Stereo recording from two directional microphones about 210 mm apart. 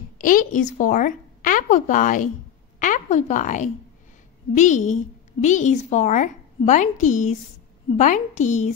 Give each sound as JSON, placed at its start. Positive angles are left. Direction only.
{"t": 0.2, "sound": "a woman's voice", "side_deg": 40}